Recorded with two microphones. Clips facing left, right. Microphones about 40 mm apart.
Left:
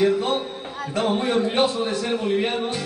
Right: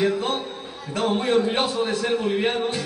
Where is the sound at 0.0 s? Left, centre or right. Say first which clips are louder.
Left 3 dB; centre.